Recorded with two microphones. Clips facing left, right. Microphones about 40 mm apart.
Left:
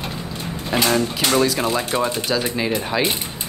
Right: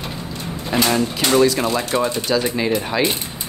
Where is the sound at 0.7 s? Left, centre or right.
Centre.